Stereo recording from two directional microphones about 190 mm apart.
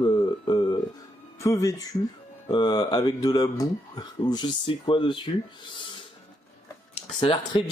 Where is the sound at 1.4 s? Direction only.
15° left (ahead or behind).